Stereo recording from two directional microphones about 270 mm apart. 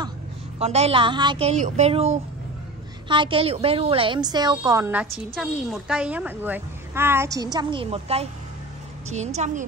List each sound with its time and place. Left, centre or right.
0.6 s a woman's voice: right